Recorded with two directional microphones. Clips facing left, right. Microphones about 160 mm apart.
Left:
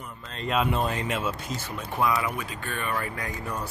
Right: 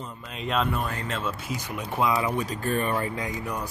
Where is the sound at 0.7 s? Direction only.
20° left (ahead or behind).